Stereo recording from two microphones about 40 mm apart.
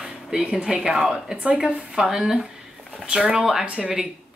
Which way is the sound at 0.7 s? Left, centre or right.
Right.